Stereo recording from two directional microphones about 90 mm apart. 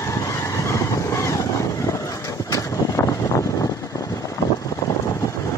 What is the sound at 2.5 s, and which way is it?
Vehicle, 40° left (ahead or behind).